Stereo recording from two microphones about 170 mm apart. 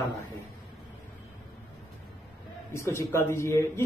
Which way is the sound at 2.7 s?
15° left (ahead or behind).